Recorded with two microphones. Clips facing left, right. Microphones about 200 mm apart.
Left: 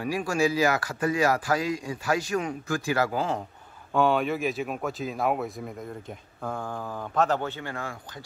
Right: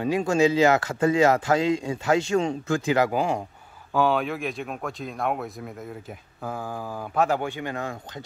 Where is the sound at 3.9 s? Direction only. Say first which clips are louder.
Even; centre (ahead or behind).